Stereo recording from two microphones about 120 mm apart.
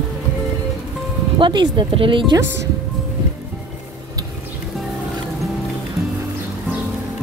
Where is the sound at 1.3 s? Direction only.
40° right (ahead or behind).